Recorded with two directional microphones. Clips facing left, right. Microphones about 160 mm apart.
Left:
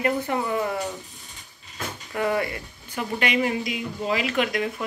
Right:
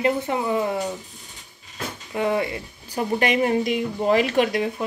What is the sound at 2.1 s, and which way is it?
Speech, 20° right (ahead or behind).